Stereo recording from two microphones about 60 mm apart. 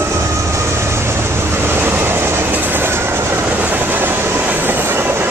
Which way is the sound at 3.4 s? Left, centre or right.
Right.